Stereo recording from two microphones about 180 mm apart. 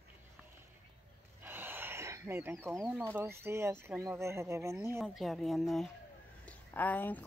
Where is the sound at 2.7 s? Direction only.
Centre (ahead or behind).